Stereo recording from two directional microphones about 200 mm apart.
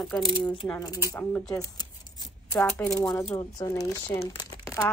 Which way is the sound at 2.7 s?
5° left (ahead or behind).